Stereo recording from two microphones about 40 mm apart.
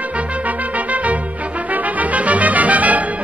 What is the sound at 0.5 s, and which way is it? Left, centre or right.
Music, right.